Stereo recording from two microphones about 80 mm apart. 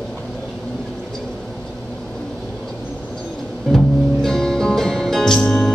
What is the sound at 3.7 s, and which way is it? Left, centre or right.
Music, centre.